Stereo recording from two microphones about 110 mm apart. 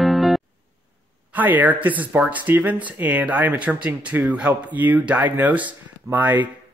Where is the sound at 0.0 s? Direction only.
Centre (ahead or behind).